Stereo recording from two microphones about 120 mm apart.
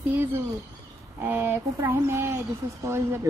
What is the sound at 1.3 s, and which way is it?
Speech, 20° right (ahead or behind).